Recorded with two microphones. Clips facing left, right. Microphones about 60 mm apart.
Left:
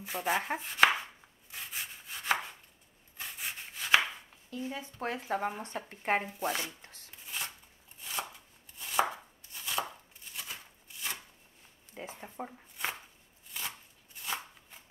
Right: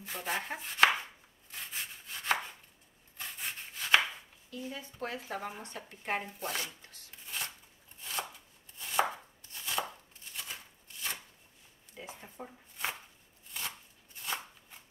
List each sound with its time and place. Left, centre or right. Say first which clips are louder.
0.0 s chopping: left 5 dB; centre
0.6 s chopping: right 2 dB; centre
4.5 s speech: left 3 dB; left
6.2 s speech: left 4 dB; centre
8.0 s chopping: even; centre
12.0 s a sound: left 3 dB; left
12.4 s speech: left 6 dB; left
12.7 s chopping: even; centre
14.2 s shuffling cards: even; centre